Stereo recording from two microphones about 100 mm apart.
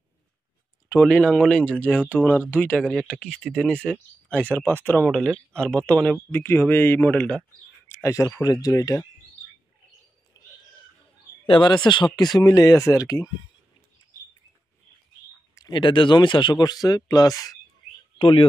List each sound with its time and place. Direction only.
0.8 s speech: 15° left (ahead or behind)
2.2 s speech: 25° left (ahead or behind)
2.9 s speech: 10° left (ahead or behind)
4.3 s speech: 15° left (ahead or behind)
5.1 s speech: 5° left (ahead or behind)
6.3 s speech: 20° left (ahead or behind)
7.9 s speech: 30° left (ahead or behind)
10.3 s a sound: 40° left (ahead or behind)
11.4 s speech: 55° left (ahead or behind); by 13.3 s 35° left (ahead or behind)
15.7 s speech: 55° left (ahead or behind); by 17.6 s 40° left (ahead or behind)
18.2 s speech: 65° left (ahead or behind)